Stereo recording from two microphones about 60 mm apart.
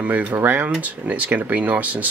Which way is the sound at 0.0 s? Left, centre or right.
Right.